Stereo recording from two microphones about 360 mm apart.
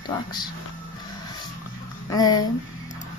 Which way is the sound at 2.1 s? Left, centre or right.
Centre.